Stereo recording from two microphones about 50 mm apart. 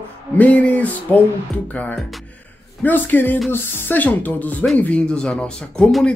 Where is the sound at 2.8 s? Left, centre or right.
Left.